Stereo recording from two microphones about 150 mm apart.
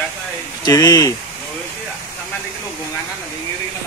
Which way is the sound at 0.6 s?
25° left (ahead or behind).